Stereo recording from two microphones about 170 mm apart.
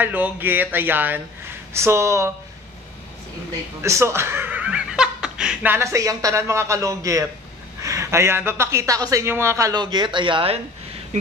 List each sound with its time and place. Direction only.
0.0 s speech: 10° right (ahead or behind)
3.8 s a man's voice: 15° right (ahead or behind); by 10.6 s 30° right (ahead or behind)